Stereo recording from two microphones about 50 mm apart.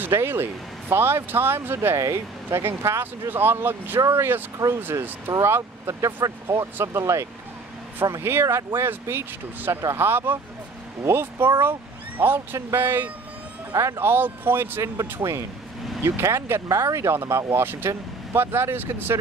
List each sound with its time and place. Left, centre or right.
0.1 s speech: right
2.0 s speech: right
2.6 s speech: right
8.2 s speech: right
14.8 s speech: right
16.7 s speech: right
17.1 s speech: right